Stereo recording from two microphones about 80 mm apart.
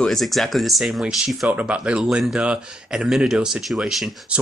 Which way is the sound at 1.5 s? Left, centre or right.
Centre.